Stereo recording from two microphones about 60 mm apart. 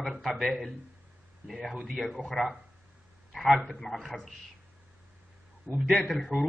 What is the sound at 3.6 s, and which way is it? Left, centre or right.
Speech, left.